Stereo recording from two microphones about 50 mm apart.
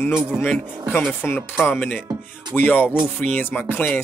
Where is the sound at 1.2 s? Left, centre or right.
Left.